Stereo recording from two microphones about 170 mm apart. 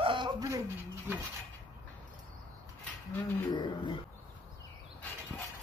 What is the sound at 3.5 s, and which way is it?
Speech, 25° left (ahead or behind).